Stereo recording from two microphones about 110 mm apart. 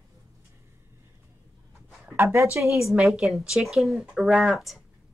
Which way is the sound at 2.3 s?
25° right (ahead or behind).